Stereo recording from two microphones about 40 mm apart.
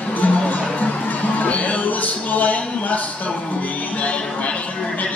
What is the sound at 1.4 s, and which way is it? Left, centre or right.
Speech, left.